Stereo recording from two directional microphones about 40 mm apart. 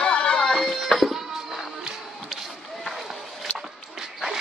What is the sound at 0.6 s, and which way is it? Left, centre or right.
Music, centre.